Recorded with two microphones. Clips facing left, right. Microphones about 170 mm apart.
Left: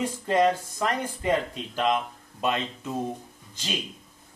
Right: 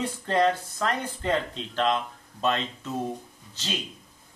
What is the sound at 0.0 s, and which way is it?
Speech, 10° left (ahead or behind).